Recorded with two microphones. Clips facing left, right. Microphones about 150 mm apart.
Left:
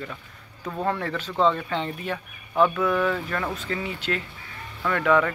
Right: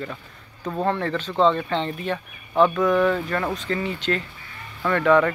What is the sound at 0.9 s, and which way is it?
Speech, 10° left (ahead or behind).